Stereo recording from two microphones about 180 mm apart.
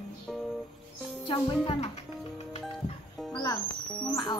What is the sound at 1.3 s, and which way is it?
Music, 25° left (ahead or behind).